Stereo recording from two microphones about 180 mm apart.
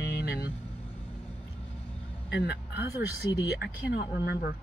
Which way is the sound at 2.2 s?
70° left (ahead or behind).